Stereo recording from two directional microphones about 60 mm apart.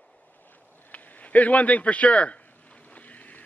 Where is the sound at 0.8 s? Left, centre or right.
Left.